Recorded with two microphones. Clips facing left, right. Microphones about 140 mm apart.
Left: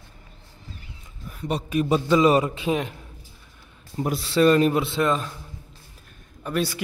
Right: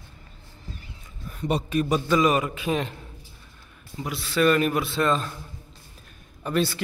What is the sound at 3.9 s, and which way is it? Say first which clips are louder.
Speech: left 6 dB; 40° left (ahead or behind).